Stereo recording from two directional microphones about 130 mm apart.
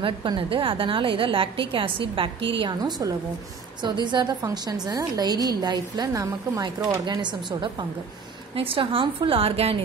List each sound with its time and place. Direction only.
0.0 s a woman's voice: 40° right (ahead or behind)